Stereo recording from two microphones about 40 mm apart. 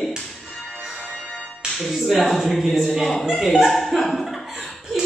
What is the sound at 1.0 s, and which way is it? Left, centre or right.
Music, centre.